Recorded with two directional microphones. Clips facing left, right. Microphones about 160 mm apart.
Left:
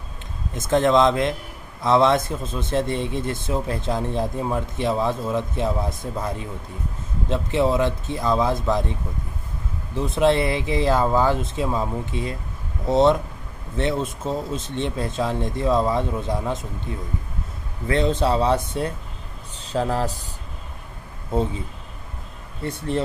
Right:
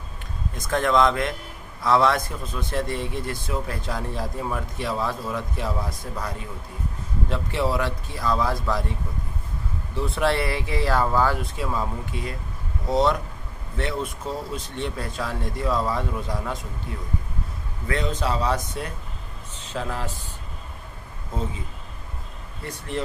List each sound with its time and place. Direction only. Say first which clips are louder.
0.6 s a man's voice: left 3 dB; 20° left (ahead or behind)
9.9 s a man's voice: left 5 dB; 20° left (ahead or behind)
17.8 s a man's voice: left 6 dB; 30° left (ahead or behind)
22.7 s speech: left 5 dB; 30° left (ahead or behind)